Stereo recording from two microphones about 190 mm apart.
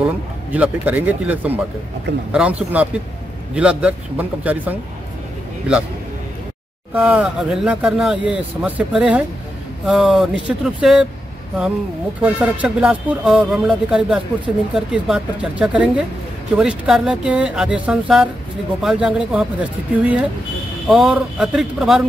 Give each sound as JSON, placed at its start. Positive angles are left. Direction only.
{"t": 0.0, "sound": "speech", "side_deg": -5}
{"t": 6.9, "sound": "speech", "side_deg": -10}
{"t": 12.2, "sound": "speech", "side_deg": -5}